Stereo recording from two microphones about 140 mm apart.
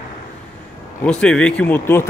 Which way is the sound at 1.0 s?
5° left (ahead or behind).